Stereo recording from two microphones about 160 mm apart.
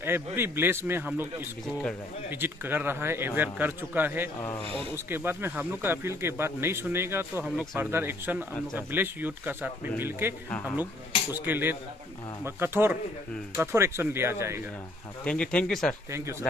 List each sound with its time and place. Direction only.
0.0 s speech: 15° right (ahead or behind)
2.3 s speech: 15° right (ahead or behind)
4.4 s speech: 15° left (ahead or behind)
4.9 s speech: 15° right (ahead or behind)
7.5 s speech: 5° right (ahead or behind)
7.9 s speech: 15° right (ahead or behind)
11.4 s speech: 10° right (ahead or behind)
15.2 s speech: 5° left (ahead or behind)